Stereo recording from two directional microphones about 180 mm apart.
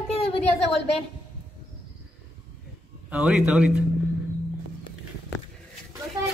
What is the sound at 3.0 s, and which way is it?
Speech, 5° right (ahead or behind).